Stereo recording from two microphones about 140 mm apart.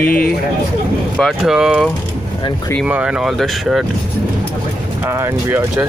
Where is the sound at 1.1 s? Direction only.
Centre (ahead or behind).